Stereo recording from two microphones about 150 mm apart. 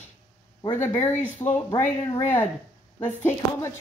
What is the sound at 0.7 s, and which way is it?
Speech, 20° left (ahead or behind).